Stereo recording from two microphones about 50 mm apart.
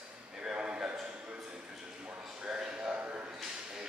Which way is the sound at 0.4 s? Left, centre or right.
Centre.